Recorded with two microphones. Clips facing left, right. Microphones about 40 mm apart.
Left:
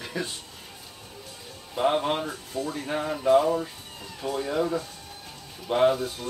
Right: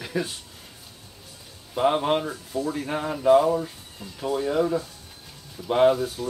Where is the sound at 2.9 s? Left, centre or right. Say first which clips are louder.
Right 1 dB; centre.